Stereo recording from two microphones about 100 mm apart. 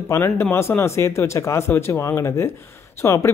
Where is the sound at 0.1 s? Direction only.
25° left (ahead or behind).